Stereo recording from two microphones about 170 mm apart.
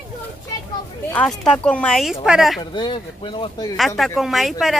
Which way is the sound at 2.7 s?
30° left (ahead or behind).